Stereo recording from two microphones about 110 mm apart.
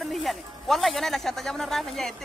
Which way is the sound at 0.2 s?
Centre (ahead or behind).